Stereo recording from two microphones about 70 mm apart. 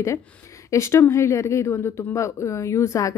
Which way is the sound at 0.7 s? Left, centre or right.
Left.